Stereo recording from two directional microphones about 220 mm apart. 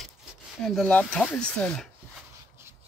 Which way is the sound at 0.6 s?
Centre (ahead or behind).